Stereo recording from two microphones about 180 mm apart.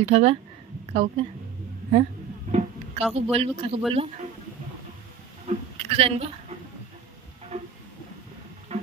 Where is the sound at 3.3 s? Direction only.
35° right (ahead or behind).